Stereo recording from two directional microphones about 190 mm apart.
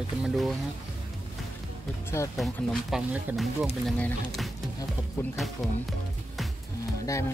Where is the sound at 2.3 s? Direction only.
Centre (ahead or behind).